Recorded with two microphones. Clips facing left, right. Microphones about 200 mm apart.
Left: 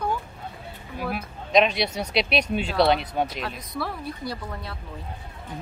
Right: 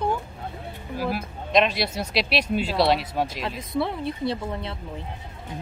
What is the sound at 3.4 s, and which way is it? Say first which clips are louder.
Speech: right 5 dB; 25° right (ahead or behind).